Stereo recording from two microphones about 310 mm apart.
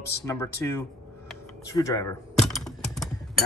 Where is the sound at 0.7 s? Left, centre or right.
Centre.